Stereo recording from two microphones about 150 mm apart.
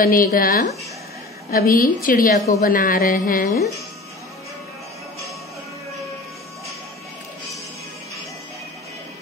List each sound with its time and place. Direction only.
0.0 s speech: 70° left (ahead or behind)